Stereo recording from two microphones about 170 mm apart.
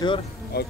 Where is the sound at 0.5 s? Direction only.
70° left (ahead or behind).